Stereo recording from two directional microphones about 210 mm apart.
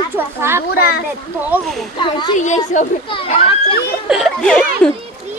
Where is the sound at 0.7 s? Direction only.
45° left (ahead or behind).